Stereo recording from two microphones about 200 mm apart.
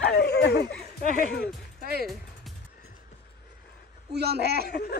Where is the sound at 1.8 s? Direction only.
50° right (ahead or behind).